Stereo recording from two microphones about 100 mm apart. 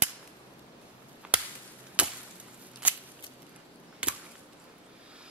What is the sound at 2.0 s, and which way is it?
Chop, 10° right (ahead or behind).